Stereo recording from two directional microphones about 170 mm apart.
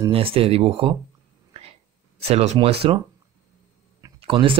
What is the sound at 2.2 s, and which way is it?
Speech, 40° right (ahead or behind).